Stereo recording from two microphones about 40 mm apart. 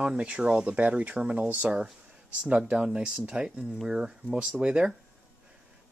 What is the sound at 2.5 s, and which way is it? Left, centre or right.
Speech, right.